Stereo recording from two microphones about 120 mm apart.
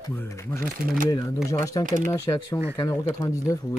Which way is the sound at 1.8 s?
90° right.